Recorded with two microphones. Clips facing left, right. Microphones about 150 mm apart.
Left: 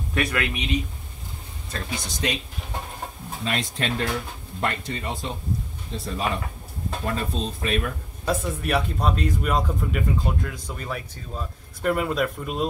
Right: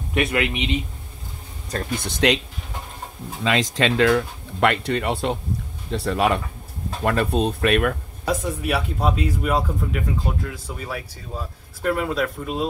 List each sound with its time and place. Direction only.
0.1 s speech: 25° right (ahead or behind)
1.7 s speech: 40° right (ahead or behind)
2.0 s speech: 65° right (ahead or behind)
3.4 s speech: 90° right; by 7.9 s 70° right (ahead or behind)
8.3 s speech: 5° right (ahead or behind)